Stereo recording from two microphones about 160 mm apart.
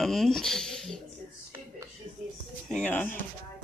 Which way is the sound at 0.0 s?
Centre (ahead or behind).